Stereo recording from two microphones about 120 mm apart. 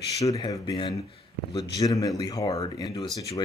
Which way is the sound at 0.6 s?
40° left (ahead or behind).